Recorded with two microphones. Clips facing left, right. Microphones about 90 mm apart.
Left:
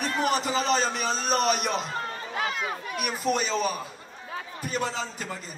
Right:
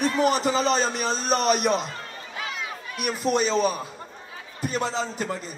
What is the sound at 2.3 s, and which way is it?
Crowd, 50° left (ahead or behind).